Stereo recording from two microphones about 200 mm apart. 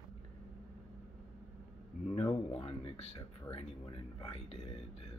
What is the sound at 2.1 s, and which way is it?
Speech, 30° left (ahead or behind).